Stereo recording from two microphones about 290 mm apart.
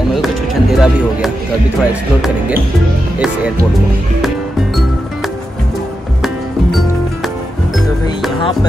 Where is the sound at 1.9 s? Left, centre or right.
Centre.